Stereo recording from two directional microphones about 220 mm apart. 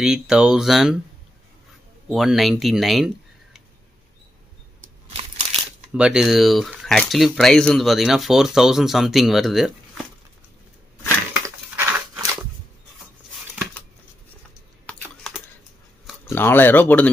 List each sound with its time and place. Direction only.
0.0 s speech: 5° right (ahead or behind)
2.0 s speech: centre (ahead or behind)
5.0 s crushing: 25° right (ahead or behind)
5.9 s speech: 5° right (ahead or behind)
11.4 s a sound: 10° right (ahead or behind)
16.3 s speech: 10° left (ahead or behind)